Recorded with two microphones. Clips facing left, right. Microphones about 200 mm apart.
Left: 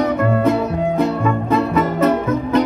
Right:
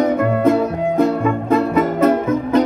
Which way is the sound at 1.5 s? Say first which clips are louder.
Right 2 dB; 50° right (ahead or behind).